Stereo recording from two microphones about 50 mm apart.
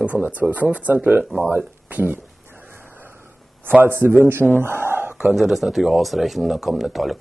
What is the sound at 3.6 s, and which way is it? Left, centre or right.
Speech, right.